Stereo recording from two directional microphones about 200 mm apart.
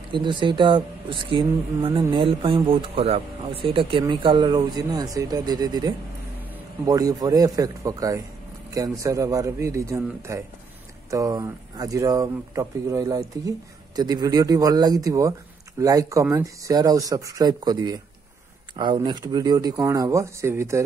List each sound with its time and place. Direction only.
0.1 s speech: 25° right (ahead or behind)